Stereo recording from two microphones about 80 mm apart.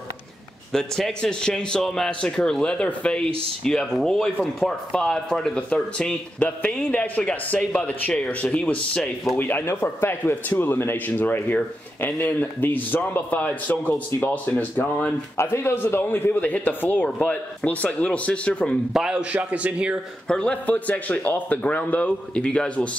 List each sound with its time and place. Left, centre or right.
0.7 s a man's voice: centre; by 15.1 s left
15.3 s speech: left; by 18.8 s centre
18.9 s a man's voice: centre
20.2 s a man's voice: centre